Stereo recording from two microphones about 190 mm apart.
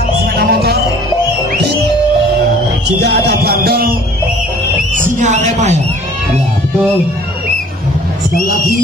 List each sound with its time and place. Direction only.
0.4 s music: 55° right (ahead or behind)
3.0 s music: 60° right (ahead or behind)
4.9 s speech: 40° right (ahead or behind)